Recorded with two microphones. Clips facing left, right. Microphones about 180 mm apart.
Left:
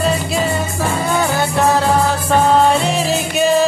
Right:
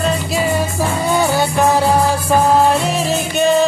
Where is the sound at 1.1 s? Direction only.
15° right (ahead or behind).